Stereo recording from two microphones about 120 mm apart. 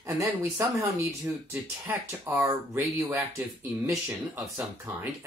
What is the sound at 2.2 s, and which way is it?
Speech, 25° right (ahead or behind).